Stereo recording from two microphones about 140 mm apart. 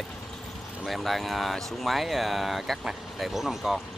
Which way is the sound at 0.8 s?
Centre (ahead or behind).